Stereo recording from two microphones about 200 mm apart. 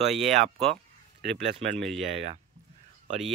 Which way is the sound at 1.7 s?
Centre (ahead or behind).